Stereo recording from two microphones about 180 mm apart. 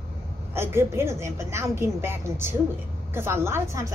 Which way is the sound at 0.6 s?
15° right (ahead or behind).